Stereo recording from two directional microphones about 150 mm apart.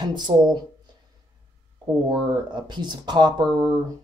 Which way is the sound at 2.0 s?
30° right (ahead or behind).